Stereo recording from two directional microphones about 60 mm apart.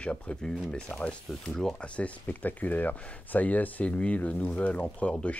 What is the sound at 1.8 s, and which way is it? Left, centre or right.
Speech, left.